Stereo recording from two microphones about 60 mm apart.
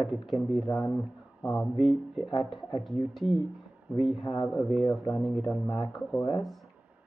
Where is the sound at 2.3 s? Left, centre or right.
Left.